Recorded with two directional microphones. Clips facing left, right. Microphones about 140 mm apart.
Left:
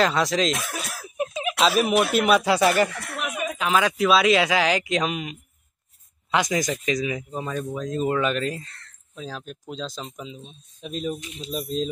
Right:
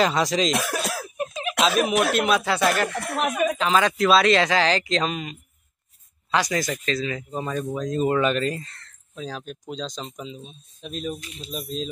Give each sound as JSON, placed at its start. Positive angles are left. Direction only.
{"t": 0.0, "sound": "speech", "side_deg": 0}
{"t": 0.6, "sound": "cough", "side_deg": -70}
{"t": 1.1, "sound": "a sound", "side_deg": 10}
{"t": 1.6, "sound": "speech", "side_deg": 5}
{"t": 7.3, "sound": "speech", "side_deg": 0}
{"t": 11.1, "sound": "speech", "side_deg": 20}
{"t": 11.5, "sound": "speech", "side_deg": 0}